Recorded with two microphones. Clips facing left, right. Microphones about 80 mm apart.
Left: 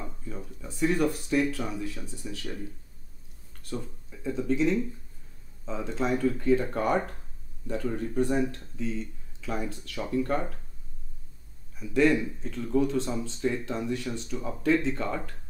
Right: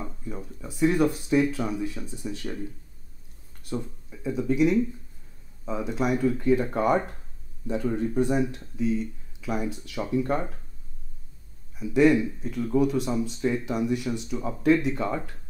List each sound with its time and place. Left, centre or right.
0.0 s speech: centre
3.6 s speech: centre
11.8 s speech: centre